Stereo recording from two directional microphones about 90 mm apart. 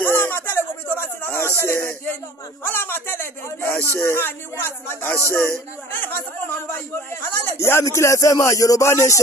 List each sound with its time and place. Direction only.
0.0 s music: 25° left (ahead or behind)
1.7 s a sound: 25° left (ahead or behind)
2.6 s music: 25° left (ahead or behind)
5.9 s speech: 25° left (ahead or behind)